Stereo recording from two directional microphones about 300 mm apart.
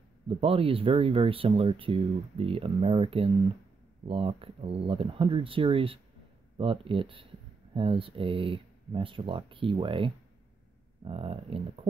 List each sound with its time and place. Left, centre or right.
0.3 s speech: centre